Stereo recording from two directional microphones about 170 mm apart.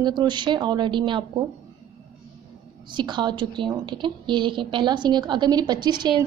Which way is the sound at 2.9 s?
25° right (ahead or behind).